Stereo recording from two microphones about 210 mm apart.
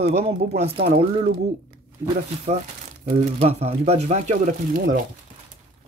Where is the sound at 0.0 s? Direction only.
30° right (ahead or behind).